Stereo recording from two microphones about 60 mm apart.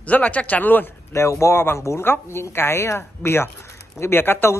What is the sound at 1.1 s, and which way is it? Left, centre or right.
Speech, left.